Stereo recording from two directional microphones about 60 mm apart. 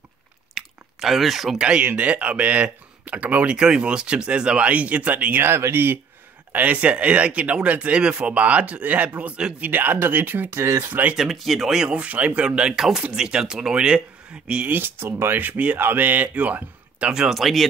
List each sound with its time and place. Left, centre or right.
0.6 s chewing: centre
1.6 s speech: centre
5.4 s speech: right
6.5 s speech: right
11.1 s speech: centre
14.7 s speech: right
17.1 s speech: centre